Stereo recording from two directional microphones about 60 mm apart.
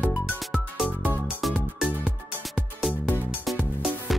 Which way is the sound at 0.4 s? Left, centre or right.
Centre.